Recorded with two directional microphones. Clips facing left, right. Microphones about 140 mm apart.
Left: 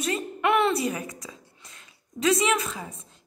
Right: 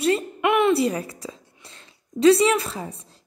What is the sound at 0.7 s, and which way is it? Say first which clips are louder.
A woman's voice: right 6 dB; 30° right (ahead or behind).